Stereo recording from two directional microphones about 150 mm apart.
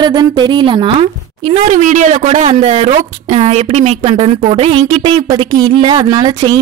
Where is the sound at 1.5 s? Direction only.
55° right (ahead or behind); by 6.6 s 30° right (ahead or behind).